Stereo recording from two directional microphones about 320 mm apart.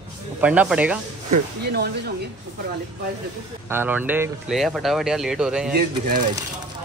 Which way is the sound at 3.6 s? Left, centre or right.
Centre.